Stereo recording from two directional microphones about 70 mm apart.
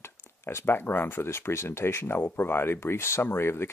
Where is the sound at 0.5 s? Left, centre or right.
Left.